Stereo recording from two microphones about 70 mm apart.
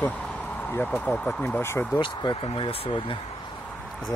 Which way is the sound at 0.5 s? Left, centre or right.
Left.